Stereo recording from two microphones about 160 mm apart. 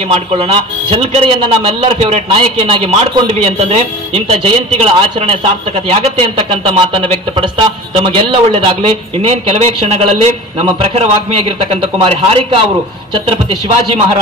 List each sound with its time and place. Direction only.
0.1 s speech: 40° right (ahead or behind)